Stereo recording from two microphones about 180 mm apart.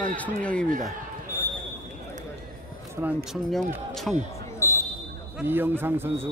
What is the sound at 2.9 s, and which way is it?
Speech, 5° right (ahead or behind).